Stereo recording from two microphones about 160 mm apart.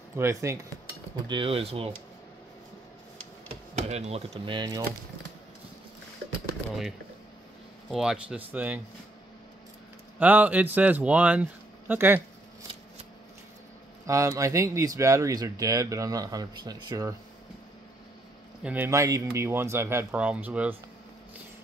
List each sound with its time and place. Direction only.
0.1 s speech: 15° right (ahead or behind)
1.2 s speech: 30° right (ahead or behind)
3.9 s speech: 45° right (ahead or behind)
4.5 s speech: 25° right (ahead or behind)
7.9 s speech: 5° right (ahead or behind)
10.1 s speech: 10° right (ahead or behind)
14.0 s speech: 20° right (ahead or behind)
18.6 s speech: 10° right (ahead or behind)